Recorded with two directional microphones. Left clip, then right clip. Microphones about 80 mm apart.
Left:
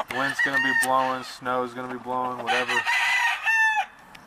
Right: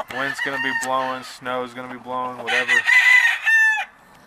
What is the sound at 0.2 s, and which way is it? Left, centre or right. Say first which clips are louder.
Chicken: left 1 dB; right.